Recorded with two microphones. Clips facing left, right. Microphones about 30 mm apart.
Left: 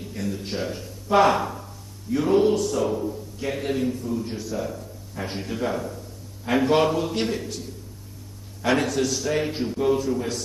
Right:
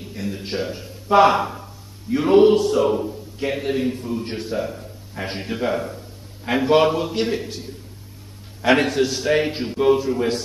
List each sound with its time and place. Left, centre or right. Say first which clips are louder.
0.0 s a man's voice: right 1 dB; centre
1.1 s a sound: right 4 dB; centre
2.2 s a man's voice: right 7 dB; right
4.2 s a man's voice: right 3 dB; right
4.6 s a man's voice: right 3 dB; right
8.7 s a man's voice: right 4 dB; right